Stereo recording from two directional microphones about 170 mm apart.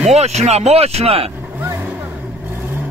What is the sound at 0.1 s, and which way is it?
Speech, 40° right (ahead or behind).